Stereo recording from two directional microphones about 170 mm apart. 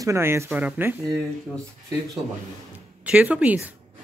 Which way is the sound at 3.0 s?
5° right (ahead or behind).